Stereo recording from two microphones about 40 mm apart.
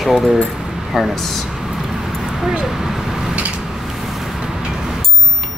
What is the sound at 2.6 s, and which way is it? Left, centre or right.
Vehicle, centre.